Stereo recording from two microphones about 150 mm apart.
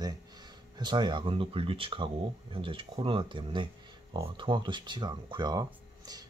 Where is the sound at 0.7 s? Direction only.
30° right (ahead or behind).